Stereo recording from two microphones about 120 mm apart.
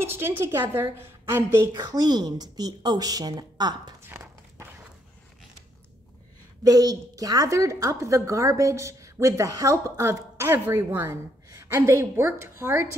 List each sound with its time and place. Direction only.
0.0 s a woman's voice: 20° right (ahead or behind)
1.7 s speech: 35° right (ahead or behind)
4.0 s horse: 25° right (ahead or behind)
6.6 s a woman's voice: 30° right (ahead or behind)